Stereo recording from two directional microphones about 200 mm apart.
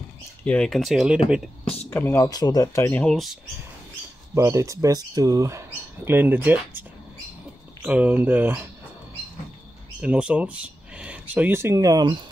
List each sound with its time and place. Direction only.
0.5 s speech: 5° left (ahead or behind)
1.6 s a sound: 30° left (ahead or behind)
1.9 s speech: 10° left (ahead or behind)
4.4 s speech: 15° right (ahead or behind)
7.8 s speech: 5° right (ahead or behind)
10.0 s speech: 5° right (ahead or behind)